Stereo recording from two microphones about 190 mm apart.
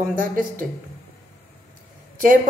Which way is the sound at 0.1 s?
45° right (ahead or behind).